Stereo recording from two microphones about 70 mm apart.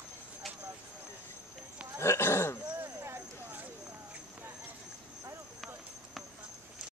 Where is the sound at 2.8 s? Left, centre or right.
Right.